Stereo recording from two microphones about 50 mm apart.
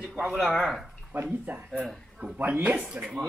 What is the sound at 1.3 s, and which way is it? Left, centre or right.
Speech, right.